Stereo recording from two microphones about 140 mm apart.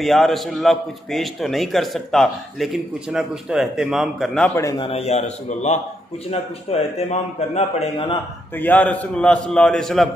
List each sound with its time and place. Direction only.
0.0 s a man's voice: centre (ahead or behind)
4.7 s a man's voice: 40° left (ahead or behind)
8.5 s a man's voice: 10° left (ahead or behind)